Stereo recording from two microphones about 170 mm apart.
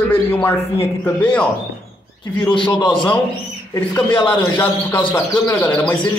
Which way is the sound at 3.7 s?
10° left (ahead or behind).